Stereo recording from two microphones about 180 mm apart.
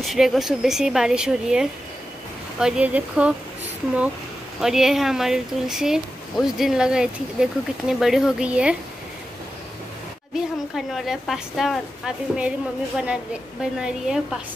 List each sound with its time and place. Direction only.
0.0 s a woman's voice: centre (ahead or behind)
4.6 s a woman's voice: centre (ahead or behind)
10.3 s a woman's voice: centre (ahead or behind)